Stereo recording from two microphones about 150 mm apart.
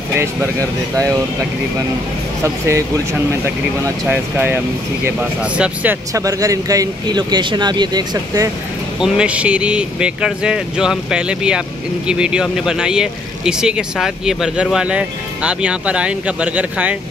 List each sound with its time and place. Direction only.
0.2 s speech: 20° right (ahead or behind)
2.4 s speech: 15° right (ahead or behind)
6.1 s speech: 20° right (ahead or behind)
9.0 s speech: 5° right (ahead or behind)